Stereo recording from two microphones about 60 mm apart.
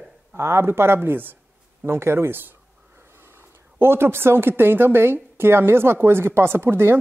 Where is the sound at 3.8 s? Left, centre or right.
Right.